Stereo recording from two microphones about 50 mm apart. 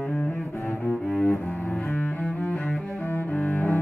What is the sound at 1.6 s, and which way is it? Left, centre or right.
Double bass, centre.